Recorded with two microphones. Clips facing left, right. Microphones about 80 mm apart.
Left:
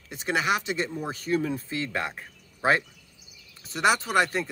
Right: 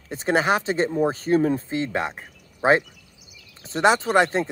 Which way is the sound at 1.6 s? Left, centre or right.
Right.